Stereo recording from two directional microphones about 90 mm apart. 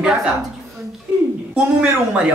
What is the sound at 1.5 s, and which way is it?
Speech, 15° right (ahead or behind).